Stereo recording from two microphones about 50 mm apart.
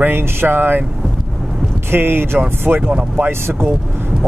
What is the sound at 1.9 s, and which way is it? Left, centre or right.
Speech, right.